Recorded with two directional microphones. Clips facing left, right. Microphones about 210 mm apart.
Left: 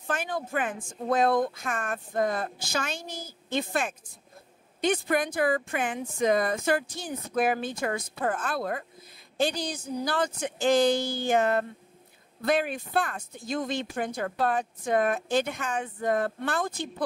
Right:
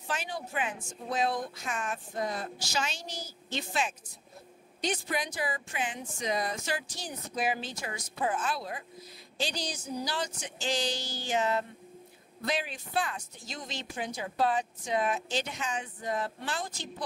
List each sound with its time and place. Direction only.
0.0 s speech: 50° left (ahead or behind)